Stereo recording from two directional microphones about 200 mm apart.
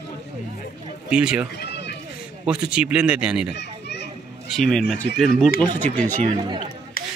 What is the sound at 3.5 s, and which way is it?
Children playing, 60° left (ahead or behind).